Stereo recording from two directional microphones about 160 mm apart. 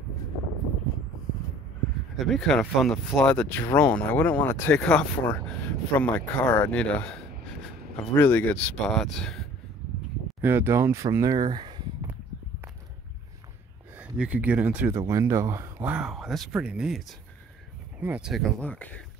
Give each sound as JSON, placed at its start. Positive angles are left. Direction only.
{"t": 2.1, "sound": "speech", "side_deg": 0}
{"t": 10.4, "sound": "speech", "side_deg": -15}
{"t": 13.9, "sound": "speech", "side_deg": -5}
{"t": 18.0, "sound": "speech", "side_deg": -5}